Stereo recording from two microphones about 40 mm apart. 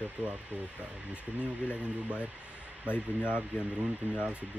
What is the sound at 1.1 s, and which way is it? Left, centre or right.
Speech, left.